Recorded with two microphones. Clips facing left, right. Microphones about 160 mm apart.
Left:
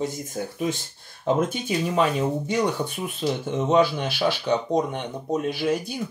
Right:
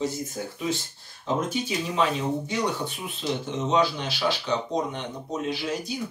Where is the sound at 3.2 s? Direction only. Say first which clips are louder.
Left 3 dB; 40° left (ahead or behind).